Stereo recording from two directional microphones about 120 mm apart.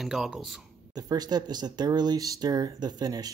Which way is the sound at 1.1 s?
35° right (ahead or behind).